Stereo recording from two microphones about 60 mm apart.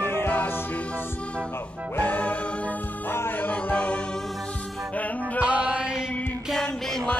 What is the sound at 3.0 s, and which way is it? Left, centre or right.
Music, left.